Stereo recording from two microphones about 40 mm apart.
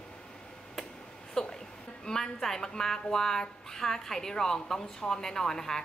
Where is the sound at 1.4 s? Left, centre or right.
Centre.